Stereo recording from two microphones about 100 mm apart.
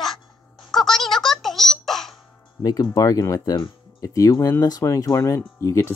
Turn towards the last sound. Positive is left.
turn(degrees=30)  # may be behind; listen again after turning